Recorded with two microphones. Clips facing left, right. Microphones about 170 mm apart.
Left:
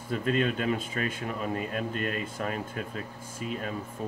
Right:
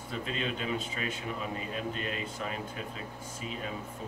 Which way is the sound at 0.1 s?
50° left (ahead or behind).